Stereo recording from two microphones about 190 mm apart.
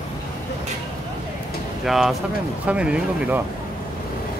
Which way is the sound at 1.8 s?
Centre (ahead or behind).